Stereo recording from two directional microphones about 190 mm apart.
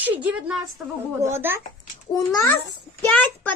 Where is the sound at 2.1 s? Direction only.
20° left (ahead or behind).